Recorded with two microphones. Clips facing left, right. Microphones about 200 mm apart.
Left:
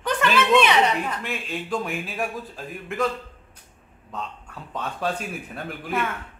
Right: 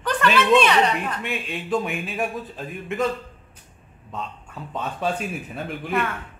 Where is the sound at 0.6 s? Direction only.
15° left (ahead or behind).